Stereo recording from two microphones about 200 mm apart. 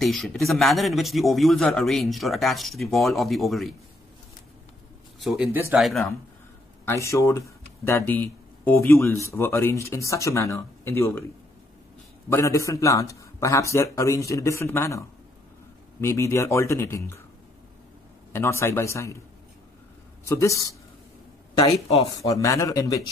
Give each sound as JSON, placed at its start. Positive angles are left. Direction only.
{"t": 0.0, "sound": "a man's voice", "side_deg": 0}
{"t": 5.2, "sound": "a man's voice", "side_deg": -5}
{"t": 6.9, "sound": "speech", "side_deg": 15}
{"t": 12.3, "sound": "speech", "side_deg": 15}
{"t": 18.3, "sound": "speech", "side_deg": 15}
{"t": 20.2, "sound": "speech", "side_deg": 15}
{"t": 21.8, "sound": "speech", "side_deg": 30}
{"t": 22.1, "sound": "speech", "side_deg": 15}